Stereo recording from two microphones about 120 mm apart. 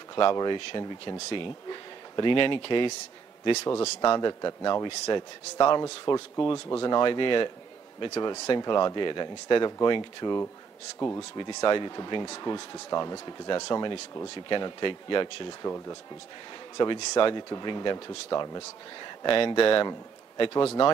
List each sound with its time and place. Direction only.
0.1 s speech: 40° left (ahead or behind)
3.6 s speech: 30° left (ahead or behind)
11.0 s speech: 25° left (ahead or behind)
11.3 s speech: 40° left (ahead or behind)
16.7 s a man's voice: 35° left (ahead or behind)